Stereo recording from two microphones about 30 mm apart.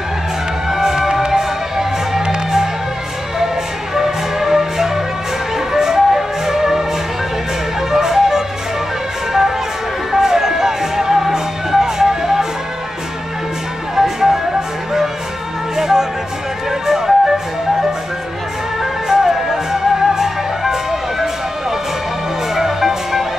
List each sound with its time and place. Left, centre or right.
0.7 s music: centre
3.9 s music: centre
7.9 s music: centre
10.1 s music: centre
13.9 s music: centre
15.7 s music: centre
19.0 s music: centre